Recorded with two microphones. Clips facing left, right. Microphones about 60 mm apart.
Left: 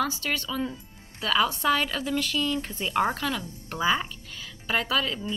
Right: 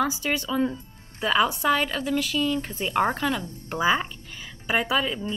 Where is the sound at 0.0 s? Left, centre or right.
Centre.